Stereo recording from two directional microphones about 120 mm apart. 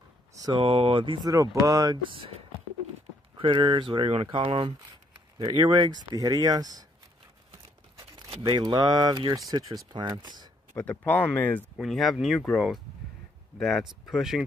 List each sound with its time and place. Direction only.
0.4 s speech: 40° right (ahead or behind)
1.3 s speech: 30° right (ahead or behind)
3.3 s speech: 45° right (ahead or behind)
8.3 s speech: 35° right (ahead or behind)
10.8 s speech: 15° left (ahead or behind)
11.7 s speech: centre (ahead or behind)